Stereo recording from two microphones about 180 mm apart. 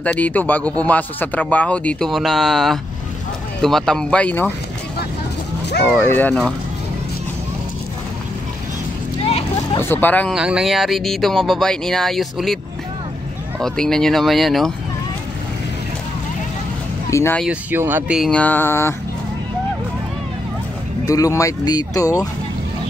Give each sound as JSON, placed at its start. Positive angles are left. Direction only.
{"t": 0.0, "sound": "speech", "side_deg": 10}
{"t": 5.9, "sound": "speech", "side_deg": 10}
{"t": 9.8, "sound": "speech", "side_deg": 10}
{"t": 10.3, "sound": "speech", "side_deg": -5}
{"t": 13.6, "sound": "speech", "side_deg": 0}
{"t": 17.1, "sound": "speech", "side_deg": 15}
{"t": 17.4, "sound": "speech", "side_deg": -10}
{"t": 21.0, "sound": "speech", "side_deg": 20}